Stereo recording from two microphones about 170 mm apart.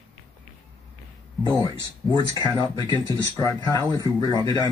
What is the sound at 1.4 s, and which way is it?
Speech, 25° left (ahead or behind).